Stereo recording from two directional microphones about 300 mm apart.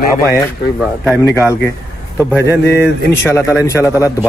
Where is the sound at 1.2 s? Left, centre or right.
Centre.